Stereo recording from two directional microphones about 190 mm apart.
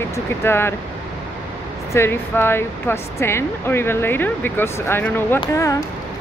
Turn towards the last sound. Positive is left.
turn(degrees=15)  # may be behind; listen again after turning